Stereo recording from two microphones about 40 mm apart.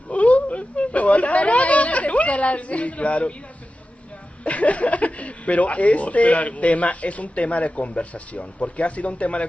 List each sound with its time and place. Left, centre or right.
0.1 s speech: left
4.5 s speech: left